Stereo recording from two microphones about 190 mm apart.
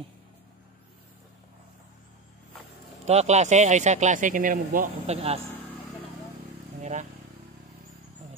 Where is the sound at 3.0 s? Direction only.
35° right (ahead or behind).